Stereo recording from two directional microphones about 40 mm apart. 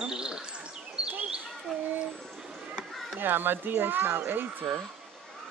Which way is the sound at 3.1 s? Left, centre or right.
Right.